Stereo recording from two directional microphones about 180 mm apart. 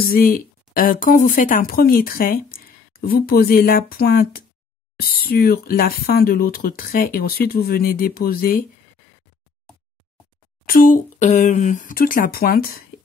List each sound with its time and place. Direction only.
0.0 s speech: 55° left (ahead or behind)
10.7 s speech: 50° left (ahead or behind)